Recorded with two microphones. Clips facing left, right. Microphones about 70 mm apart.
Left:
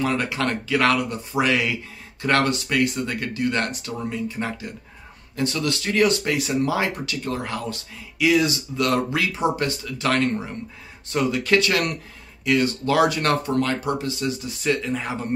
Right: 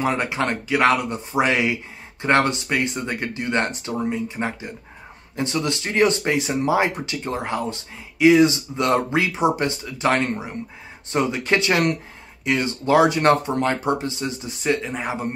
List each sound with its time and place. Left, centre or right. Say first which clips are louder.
0.0 s speech: right 1 dB; right